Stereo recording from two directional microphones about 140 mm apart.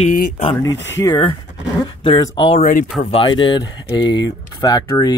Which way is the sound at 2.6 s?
70° left (ahead or behind).